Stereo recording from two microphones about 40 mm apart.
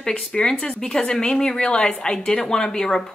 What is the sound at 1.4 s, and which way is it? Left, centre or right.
Speech, left.